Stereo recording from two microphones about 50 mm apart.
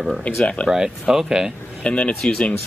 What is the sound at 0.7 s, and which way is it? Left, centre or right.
Speech, centre.